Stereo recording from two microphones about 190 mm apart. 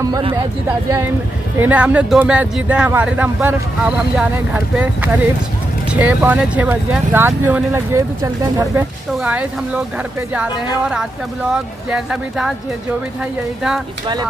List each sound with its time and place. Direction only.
0.1 s speech: 25° right (ahead or behind)
1.6 s speech: 10° right (ahead or behind)